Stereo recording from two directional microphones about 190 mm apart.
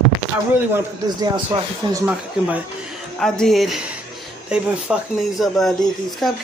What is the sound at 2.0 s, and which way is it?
Speech, 10° right (ahead or behind).